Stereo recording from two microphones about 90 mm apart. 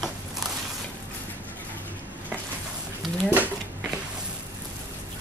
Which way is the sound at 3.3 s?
20° right (ahead or behind).